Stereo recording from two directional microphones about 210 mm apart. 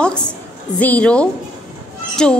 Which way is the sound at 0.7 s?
5° left (ahead or behind).